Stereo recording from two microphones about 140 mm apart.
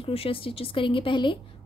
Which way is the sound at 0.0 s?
40° left (ahead or behind).